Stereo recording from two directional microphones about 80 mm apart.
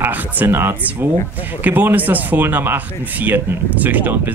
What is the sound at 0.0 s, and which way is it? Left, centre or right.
Speech, right.